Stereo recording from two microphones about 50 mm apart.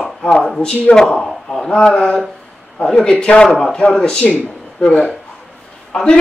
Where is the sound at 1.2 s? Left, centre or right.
Centre.